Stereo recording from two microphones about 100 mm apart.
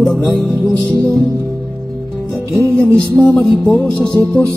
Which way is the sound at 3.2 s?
15° left (ahead or behind).